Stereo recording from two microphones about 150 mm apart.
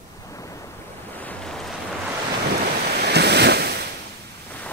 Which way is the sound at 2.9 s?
90° right.